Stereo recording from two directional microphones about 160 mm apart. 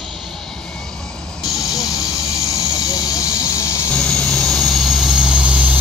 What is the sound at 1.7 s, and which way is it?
Hiss, 25° left (ahead or behind).